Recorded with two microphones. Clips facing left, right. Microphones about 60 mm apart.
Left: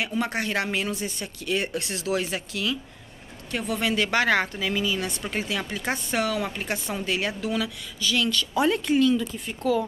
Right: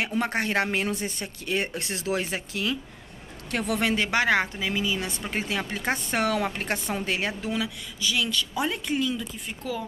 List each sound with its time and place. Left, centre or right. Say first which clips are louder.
0.0 s speech: right 1 dB; right
3.5 s a man's voice: right 1 dB; right
3.8 s speech: left 2 dB; right
4.1 s speech: left 1 dB; centre
5.3 s speech: right 2 dB; right
7.6 s speech: left 1 dB; centre
8.5 s speech: left 7 dB; centre